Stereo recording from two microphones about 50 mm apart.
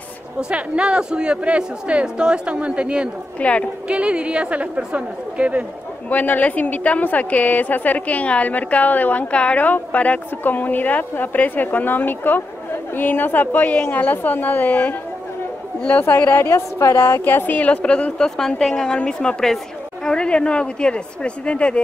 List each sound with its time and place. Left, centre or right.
0.4 s speech: centre
3.3 s a woman's voice: left
3.9 s speech: right
6.0 s a woman's voice: left
16.4 s a woman's voice: left
17.2 s a woman's voice: left
17.6 s a woman's voice: left